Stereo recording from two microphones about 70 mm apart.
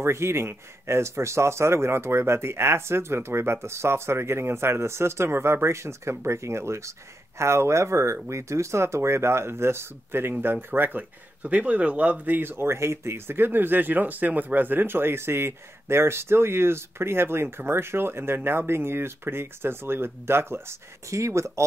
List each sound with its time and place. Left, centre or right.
0.0 s speech: right